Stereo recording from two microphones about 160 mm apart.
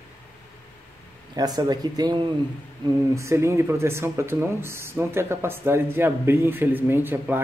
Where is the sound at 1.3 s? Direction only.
25° right (ahead or behind).